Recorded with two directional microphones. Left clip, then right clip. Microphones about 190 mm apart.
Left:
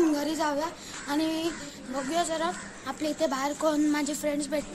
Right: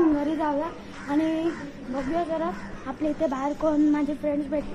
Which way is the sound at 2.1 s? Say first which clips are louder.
Right 1 dB; 25° left (ahead or behind).